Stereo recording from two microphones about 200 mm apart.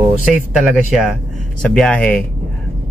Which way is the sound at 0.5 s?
5° right (ahead or behind).